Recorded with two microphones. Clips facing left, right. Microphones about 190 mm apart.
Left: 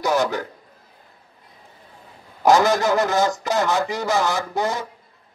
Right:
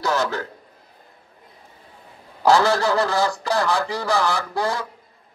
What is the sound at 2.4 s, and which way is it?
Speech, 15° left (ahead or behind).